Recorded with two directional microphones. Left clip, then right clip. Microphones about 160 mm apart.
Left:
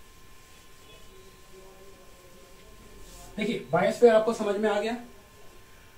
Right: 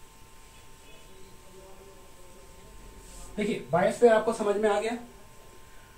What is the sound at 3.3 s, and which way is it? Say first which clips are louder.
Speech: even; 20° right (ahead or behind).